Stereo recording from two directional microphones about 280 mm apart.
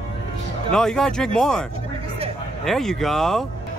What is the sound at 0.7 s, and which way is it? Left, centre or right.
Speech, centre.